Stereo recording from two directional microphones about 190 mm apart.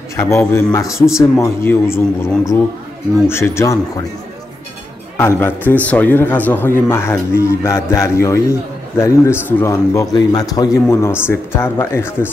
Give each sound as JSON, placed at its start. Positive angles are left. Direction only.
{"t": 0.1, "sound": "a man's voice", "side_deg": 15}
{"t": 5.1, "sound": "a man's voice", "side_deg": 15}